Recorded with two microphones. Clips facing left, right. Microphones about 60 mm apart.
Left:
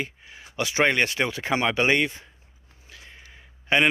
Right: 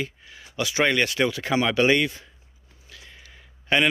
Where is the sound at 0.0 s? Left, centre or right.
Left.